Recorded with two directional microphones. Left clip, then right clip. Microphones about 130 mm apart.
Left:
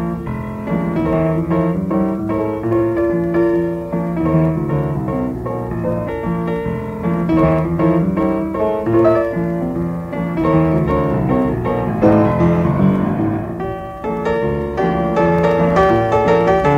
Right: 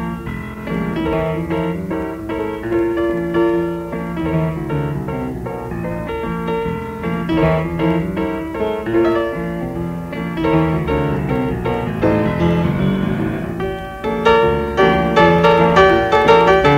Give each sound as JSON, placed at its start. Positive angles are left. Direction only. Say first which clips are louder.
{"t": 0.9, "sound": "piano", "louder": "left 2 dB", "side_deg": -35}
{"t": 3.0, "sound": "music", "louder": "left 1 dB", "side_deg": -35}
{"t": 7.1, "sound": "music", "louder": "left 2 dB", "side_deg": -35}
{"t": 10.4, "sound": "music", "louder": "left 1 dB", "side_deg": -35}
{"t": 14.2, "sound": "music", "louder": "right 7 dB", "side_deg": -35}